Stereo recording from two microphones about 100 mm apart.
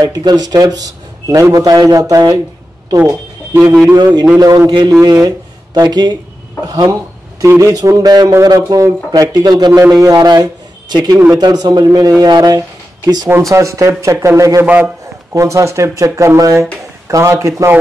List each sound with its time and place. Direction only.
0.0 s a man's voice: 45° right (ahead or behind)
3.9 s a man's voice: 45° right (ahead or behind)
9.8 s a man's voice: 30° right (ahead or behind)